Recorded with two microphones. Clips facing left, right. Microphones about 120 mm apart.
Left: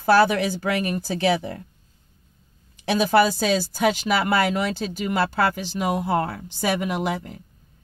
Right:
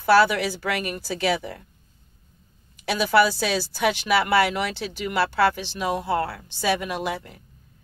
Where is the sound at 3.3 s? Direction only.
45° left (ahead or behind).